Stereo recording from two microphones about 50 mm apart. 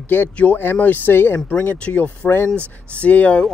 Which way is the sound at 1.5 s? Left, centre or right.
Left.